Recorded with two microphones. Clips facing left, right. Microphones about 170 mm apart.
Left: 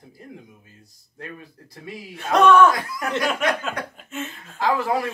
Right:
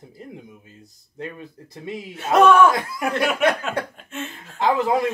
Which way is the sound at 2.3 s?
10° right (ahead or behind).